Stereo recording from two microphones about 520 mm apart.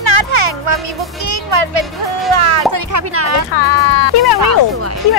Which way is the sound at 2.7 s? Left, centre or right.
Right.